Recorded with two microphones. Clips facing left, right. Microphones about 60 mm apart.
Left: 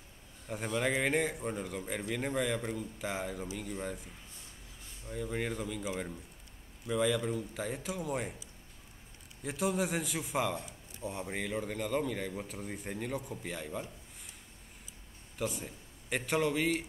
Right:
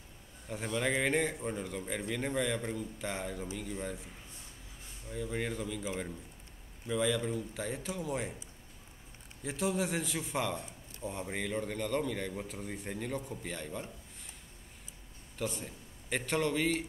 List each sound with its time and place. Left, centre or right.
0.5 s a man's voice: centre
5.1 s a man's voice: centre
6.9 s a man's voice: centre
9.4 s a man's voice: centre
15.3 s a man's voice: centre